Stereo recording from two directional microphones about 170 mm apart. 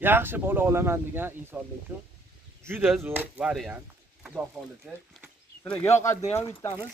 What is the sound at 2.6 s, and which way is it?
Speech, 10° right (ahead or behind).